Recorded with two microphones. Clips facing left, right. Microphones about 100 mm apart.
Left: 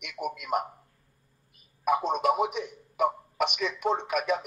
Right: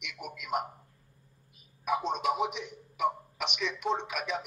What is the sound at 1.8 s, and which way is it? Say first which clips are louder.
A man's voice: left 5 dB; 50° left (ahead or behind).